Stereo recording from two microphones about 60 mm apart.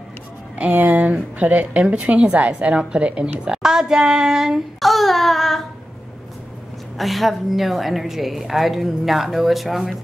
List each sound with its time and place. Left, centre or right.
0.7 s a woman's voice: right; by 5.7 s centre
7.0 s a woman's voice: centre